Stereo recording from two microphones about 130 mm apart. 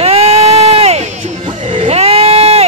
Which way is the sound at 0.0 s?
50° right (ahead or behind).